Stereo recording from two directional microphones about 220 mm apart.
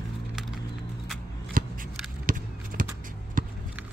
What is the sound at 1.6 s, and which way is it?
Scissors, 40° right (ahead or behind).